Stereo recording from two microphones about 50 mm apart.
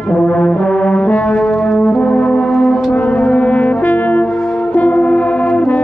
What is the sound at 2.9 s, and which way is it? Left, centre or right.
Brass instrument, left.